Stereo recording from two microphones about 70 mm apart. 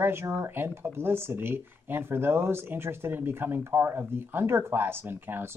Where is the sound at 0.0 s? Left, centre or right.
Right.